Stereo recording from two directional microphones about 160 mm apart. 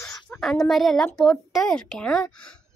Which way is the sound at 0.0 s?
20° left (ahead or behind).